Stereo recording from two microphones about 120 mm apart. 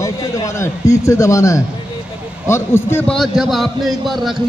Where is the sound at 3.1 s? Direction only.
Centre (ahead or behind).